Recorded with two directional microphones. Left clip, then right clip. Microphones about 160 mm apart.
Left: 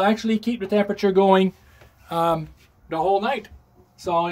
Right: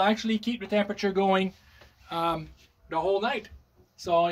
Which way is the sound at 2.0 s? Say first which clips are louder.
Left 7 dB; 90° left.